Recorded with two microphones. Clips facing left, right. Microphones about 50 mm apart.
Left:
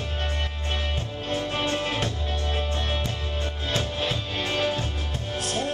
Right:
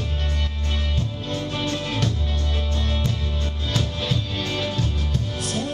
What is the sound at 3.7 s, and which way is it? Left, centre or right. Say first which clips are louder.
Music: right 1 dB; left.